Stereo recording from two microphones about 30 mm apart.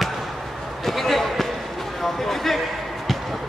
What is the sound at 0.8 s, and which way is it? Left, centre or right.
Basketball bounce, centre.